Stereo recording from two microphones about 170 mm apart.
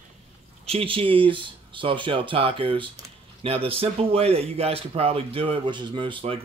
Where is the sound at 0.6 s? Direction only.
35° right (ahead or behind).